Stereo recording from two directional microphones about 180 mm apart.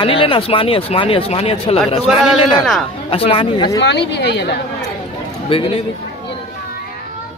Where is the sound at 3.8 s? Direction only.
75° left (ahead or behind).